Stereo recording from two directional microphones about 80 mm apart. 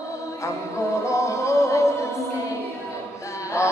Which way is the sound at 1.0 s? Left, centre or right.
Left.